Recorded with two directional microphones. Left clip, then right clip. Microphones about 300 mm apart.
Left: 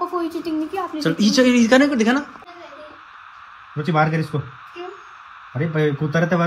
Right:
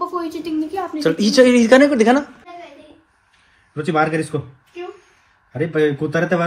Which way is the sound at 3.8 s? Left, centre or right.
Left.